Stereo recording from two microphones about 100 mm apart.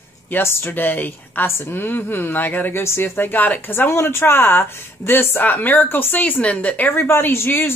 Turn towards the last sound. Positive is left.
turn(degrees=25)  # may be behind; listen again after turning